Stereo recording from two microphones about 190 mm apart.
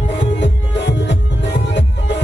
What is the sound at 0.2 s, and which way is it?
Music, 70° left (ahead or behind).